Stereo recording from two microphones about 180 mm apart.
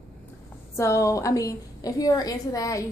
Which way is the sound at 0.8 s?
15° left (ahead or behind).